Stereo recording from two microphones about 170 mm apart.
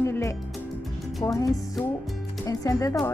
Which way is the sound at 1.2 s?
20° left (ahead or behind).